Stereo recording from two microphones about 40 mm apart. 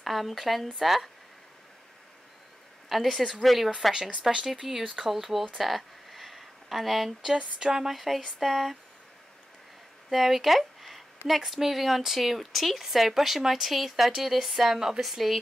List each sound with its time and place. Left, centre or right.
0.0 s speech: centre
2.9 s speech: centre
5.6 s a sound: centre
7.7 s speech: centre
10.1 s a woman's voice: centre